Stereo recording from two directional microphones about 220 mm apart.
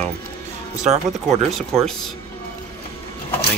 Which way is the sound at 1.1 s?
Centre (ahead or behind).